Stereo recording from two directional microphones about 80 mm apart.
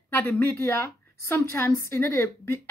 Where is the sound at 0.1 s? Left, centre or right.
Left.